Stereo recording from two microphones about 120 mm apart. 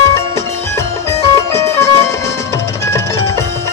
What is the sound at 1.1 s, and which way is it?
Music, 25° left (ahead or behind).